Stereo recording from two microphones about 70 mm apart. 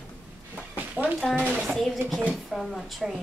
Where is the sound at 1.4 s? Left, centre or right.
Centre.